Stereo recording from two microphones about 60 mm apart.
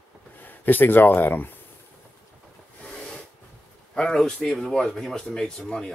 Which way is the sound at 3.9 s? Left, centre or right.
Centre.